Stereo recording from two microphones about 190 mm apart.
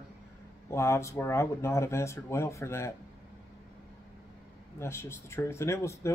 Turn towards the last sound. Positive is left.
turn(degrees=15)  # may be behind; listen again after turning